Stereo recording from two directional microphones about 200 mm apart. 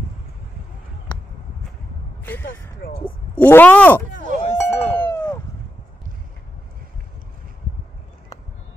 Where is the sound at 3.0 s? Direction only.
10° left (ahead or behind).